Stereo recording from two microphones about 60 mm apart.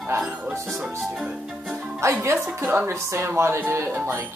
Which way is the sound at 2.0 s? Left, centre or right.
Right.